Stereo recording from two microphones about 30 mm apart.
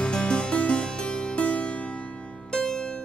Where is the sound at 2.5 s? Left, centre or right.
Left.